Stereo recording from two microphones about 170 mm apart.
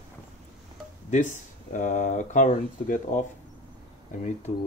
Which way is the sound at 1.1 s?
45° left (ahead or behind).